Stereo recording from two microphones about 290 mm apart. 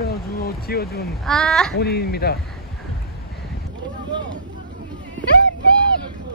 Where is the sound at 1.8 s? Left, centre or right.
Left.